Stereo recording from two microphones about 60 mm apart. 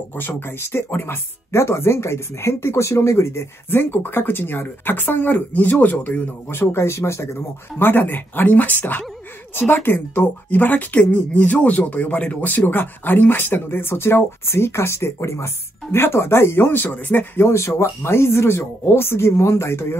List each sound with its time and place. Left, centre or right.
0.6 s speech: left
6.6 s speech: left
7.8 s speech: left
17.4 s speech: left